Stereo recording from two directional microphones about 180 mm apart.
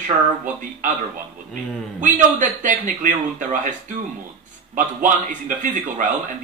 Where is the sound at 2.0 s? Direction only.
45° right (ahead or behind).